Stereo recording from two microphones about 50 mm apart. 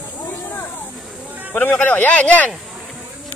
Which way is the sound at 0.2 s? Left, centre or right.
Left.